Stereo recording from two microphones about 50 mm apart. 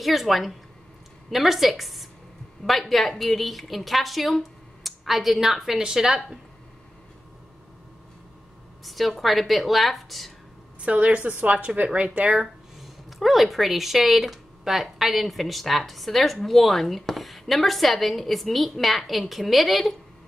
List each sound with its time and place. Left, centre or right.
0.0 s a woman's voice: centre
8.8 s a sound: centre
9.2 s speech: centre
10.8 s a woman's voice: right
12.8 s speech: centre